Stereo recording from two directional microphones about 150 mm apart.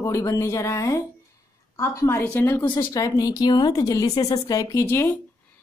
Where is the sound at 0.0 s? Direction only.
20° left (ahead or behind).